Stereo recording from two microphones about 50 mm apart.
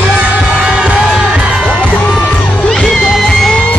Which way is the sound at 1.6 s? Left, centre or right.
Centre.